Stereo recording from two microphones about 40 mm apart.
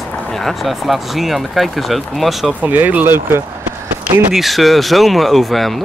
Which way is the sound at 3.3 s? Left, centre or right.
Right.